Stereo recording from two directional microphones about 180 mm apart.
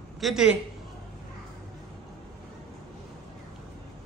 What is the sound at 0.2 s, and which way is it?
Speech, 5° right (ahead or behind).